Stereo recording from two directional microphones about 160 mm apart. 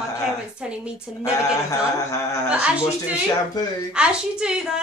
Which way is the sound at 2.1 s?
20° left (ahead or behind).